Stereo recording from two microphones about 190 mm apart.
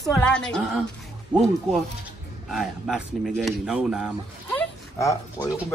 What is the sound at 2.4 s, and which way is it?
Speech, centre (ahead or behind).